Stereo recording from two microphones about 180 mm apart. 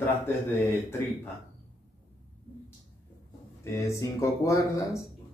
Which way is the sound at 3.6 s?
15° left (ahead or behind).